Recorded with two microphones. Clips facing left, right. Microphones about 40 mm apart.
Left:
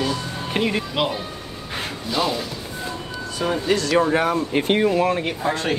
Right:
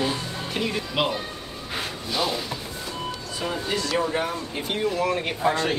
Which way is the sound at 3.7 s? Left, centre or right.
Left.